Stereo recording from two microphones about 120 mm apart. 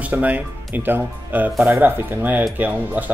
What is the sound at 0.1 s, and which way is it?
Speech, 15° right (ahead or behind).